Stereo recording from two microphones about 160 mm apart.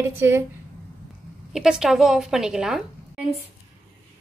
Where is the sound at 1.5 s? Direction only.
5° right (ahead or behind).